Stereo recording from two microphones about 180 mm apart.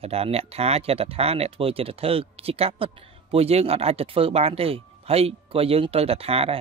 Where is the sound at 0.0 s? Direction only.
35° right (ahead or behind).